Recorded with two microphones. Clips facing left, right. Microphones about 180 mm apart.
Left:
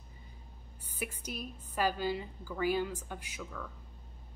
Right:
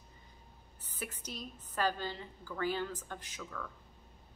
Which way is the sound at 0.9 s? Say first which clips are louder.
Left 3 dB; 10° left (ahead or behind).